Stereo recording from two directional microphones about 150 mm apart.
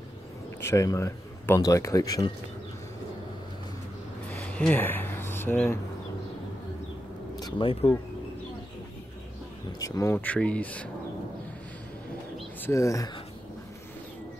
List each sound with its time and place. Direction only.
0.6 s speech: 20° left (ahead or behind)
4.3 s a sound: 10° left (ahead or behind)
7.3 s speech: 30° left (ahead or behind)
9.7 s speech: 25° left (ahead or behind)
12.6 s speech: 20° left (ahead or behind)